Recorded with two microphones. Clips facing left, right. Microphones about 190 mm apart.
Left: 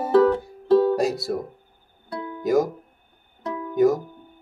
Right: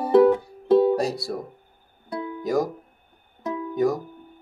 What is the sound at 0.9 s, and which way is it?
Speech, centre (ahead or behind).